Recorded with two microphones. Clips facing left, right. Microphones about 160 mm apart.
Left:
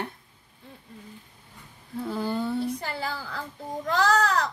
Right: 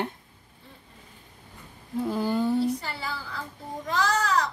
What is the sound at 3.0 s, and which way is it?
A woman's voice, 55° left (ahead or behind).